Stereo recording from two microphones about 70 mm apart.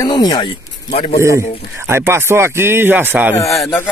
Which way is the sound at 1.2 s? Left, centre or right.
Right.